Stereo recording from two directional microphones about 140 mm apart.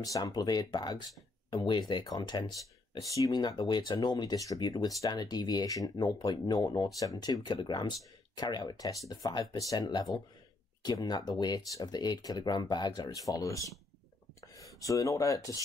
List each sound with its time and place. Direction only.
0.0 s speech: 25° left (ahead or behind)